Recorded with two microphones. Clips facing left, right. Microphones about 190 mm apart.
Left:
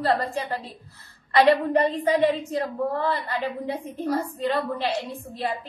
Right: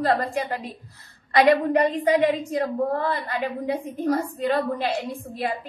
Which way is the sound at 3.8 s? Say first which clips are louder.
Right 2 dB; 15° right (ahead or behind).